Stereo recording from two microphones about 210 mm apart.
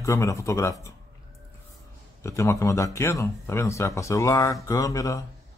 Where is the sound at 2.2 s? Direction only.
15° left (ahead or behind).